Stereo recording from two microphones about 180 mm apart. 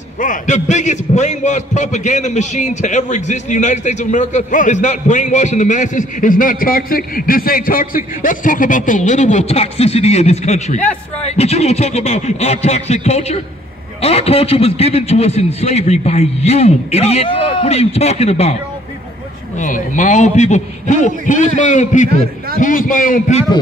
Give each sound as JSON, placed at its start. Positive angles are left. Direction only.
{"t": 0.2, "sound": "a man's voice", "side_deg": 45}
{"t": 19.6, "sound": "a man's voice", "side_deg": 45}